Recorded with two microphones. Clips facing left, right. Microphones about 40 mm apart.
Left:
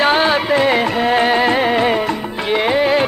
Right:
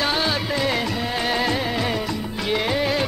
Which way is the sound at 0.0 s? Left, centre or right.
Left.